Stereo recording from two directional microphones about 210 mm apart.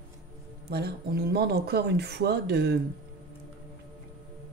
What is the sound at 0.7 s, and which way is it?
Speech, 50° right (ahead or behind).